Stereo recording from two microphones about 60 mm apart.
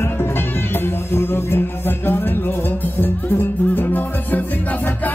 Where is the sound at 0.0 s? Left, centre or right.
Left.